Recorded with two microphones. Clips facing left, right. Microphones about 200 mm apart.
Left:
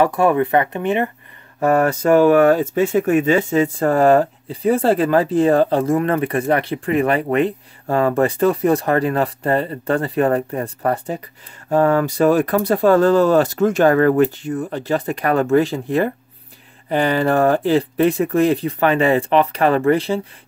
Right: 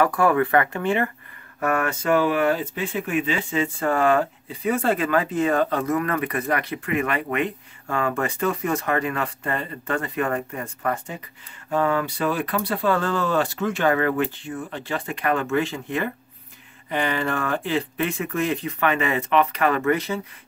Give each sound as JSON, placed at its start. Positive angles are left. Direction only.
{"t": 0.0, "sound": "speech", "side_deg": 25}
{"t": 1.6, "sound": "speech", "side_deg": 35}